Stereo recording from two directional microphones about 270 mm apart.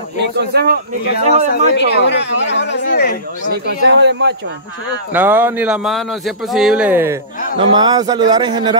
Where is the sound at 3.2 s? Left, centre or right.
Right.